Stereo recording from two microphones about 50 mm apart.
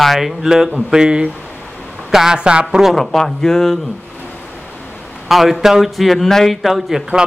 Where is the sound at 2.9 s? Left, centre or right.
Centre.